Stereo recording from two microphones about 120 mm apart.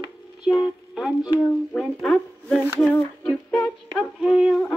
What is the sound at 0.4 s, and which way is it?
Music, 5° right (ahead or behind).